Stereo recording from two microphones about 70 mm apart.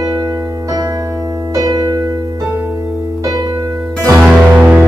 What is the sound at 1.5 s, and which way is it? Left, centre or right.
Music, right.